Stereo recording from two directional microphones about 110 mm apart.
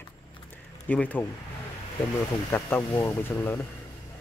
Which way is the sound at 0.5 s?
15° left (ahead or behind).